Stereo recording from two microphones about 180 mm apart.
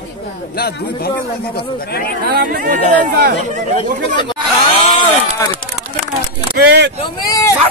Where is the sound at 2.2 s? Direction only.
55° right (ahead or behind).